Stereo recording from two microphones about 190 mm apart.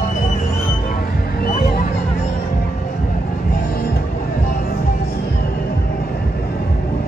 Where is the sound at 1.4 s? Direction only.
45° left (ahead or behind).